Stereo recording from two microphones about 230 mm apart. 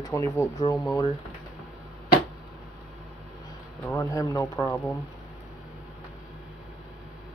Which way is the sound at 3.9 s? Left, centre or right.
Centre.